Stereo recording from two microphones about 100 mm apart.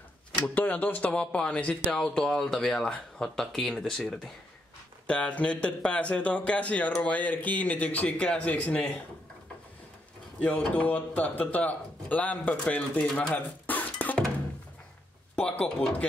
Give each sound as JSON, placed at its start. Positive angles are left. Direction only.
{"t": 0.6, "sound": "speech", "side_deg": 15}
{"t": 10.4, "sound": "speech", "side_deg": 15}
{"t": 13.3, "sound": "a sound", "side_deg": 15}
{"t": 15.3, "sound": "speech", "side_deg": 10}